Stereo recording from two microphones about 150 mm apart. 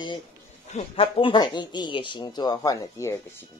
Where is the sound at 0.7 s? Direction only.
40° left (ahead or behind); by 3.2 s 20° left (ahead or behind).